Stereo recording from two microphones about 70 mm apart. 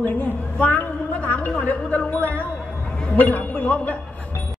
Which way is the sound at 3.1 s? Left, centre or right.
Left.